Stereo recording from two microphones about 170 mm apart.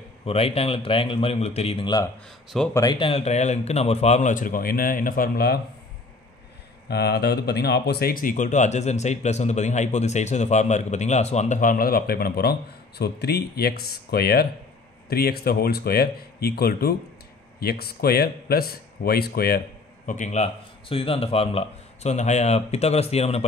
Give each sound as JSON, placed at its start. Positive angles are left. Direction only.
{"t": 0.2, "sound": "speech", "side_deg": 35}
{"t": 6.9, "sound": "speech", "side_deg": 70}
{"t": 20.1, "sound": "speech", "side_deg": 45}